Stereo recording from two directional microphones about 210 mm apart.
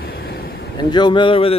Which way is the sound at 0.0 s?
50° left (ahead or behind).